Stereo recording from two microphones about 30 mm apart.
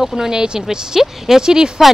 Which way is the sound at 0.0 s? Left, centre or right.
Centre.